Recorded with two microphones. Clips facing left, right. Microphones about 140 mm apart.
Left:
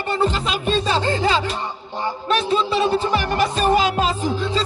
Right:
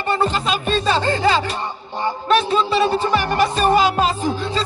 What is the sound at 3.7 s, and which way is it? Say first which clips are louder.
Music: right 2 dB; 40° right (ahead or behind).